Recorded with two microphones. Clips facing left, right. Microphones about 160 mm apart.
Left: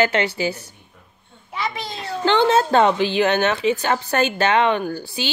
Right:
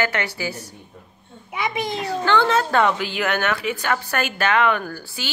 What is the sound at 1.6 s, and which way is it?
Speech, 15° right (ahead or behind).